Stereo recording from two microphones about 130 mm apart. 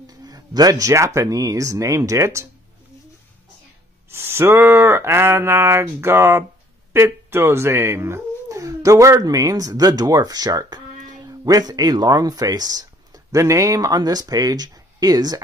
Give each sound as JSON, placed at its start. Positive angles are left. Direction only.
{"t": 0.0, "sound": "speech", "side_deg": -30}
{"t": 4.1, "sound": "speech", "side_deg": -20}